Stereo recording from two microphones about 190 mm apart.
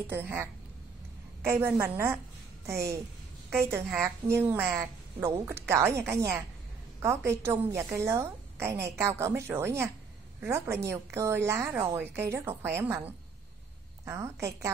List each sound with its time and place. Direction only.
0.1 s a woman's voice: 10° right (ahead or behind)
3.4 s a woman's voice: 15° right (ahead or behind)